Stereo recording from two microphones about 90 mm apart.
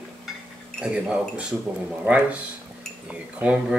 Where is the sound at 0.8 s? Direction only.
10° right (ahead or behind).